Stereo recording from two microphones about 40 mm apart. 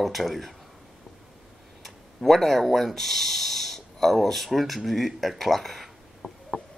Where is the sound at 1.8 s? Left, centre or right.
Centre.